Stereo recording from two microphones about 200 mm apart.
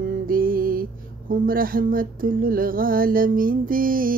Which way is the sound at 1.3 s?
45° right (ahead or behind).